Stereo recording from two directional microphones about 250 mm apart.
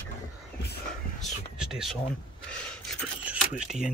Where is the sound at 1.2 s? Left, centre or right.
Centre.